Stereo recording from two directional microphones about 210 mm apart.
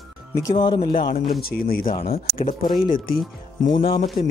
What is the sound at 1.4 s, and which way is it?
Speech, 45° left (ahead or behind).